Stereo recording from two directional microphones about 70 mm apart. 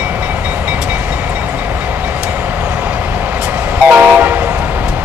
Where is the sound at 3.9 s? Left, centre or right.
Right.